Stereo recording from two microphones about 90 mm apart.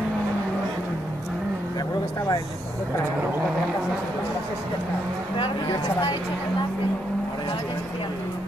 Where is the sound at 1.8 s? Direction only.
45° left (ahead or behind).